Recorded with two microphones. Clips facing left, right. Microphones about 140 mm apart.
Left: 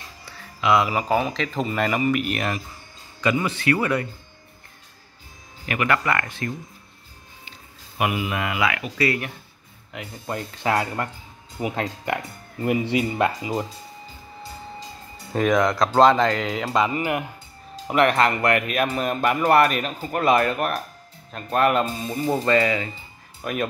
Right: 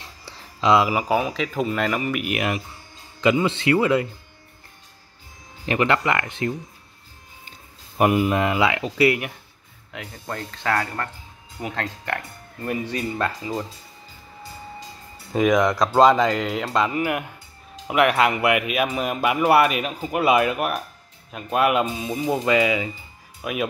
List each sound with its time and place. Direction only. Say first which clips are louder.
0.2 s music: right 3 dB; 30° right (ahead or behind)
0.8 s speech: right 1 dB; 10° right (ahead or behind)
2.2 s speech: right 2 dB; 10° right (ahead or behind)
3.2 s speech: right 3 dB; 20° right (ahead or behind)
5.7 s speech: right 2 dB; 25° right (ahead or behind)
8.0 s speech: right 6 dB; 40° right (ahead or behind); by 9.2 s 20° right (ahead or behind)
9.9 s speech: left 2 dB; 10° left (ahead or behind)
15.3 s speech: right 1 dB; 5° right (ahead or behind)